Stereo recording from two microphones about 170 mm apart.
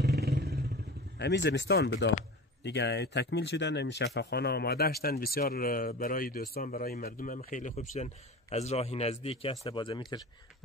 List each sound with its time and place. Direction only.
0.0 s vehicle: 75° right (ahead or behind)
1.1 s speech: 85° left
2.6 s speech: 90° left; by 10.2 s 25° left (ahead or behind)